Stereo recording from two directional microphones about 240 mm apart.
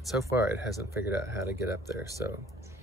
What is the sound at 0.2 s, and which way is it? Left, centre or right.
Speech, centre.